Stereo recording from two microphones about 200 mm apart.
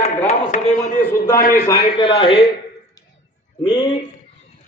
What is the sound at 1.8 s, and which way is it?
Speech, 25° left (ahead or behind).